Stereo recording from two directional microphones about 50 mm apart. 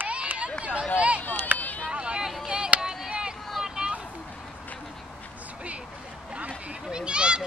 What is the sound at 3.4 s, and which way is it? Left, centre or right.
Boat, centre.